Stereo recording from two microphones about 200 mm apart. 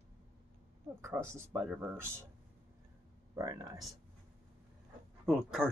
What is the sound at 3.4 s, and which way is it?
Speech, 15° right (ahead or behind).